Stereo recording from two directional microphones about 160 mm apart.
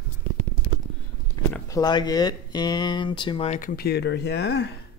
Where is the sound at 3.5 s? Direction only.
65° left (ahead or behind); by 4.6 s 90° left.